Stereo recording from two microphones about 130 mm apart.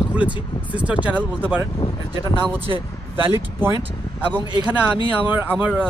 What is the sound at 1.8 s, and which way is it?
Speech, 35° left (ahead or behind).